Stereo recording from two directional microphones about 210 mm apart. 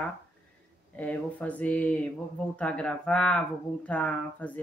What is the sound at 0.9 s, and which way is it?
Speech, 5° left (ahead or behind).